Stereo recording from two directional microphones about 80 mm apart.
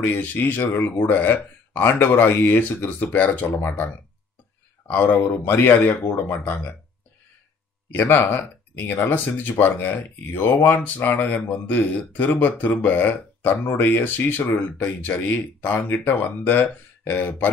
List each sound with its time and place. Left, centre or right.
0.0 s speech: left
7.9 s speech: left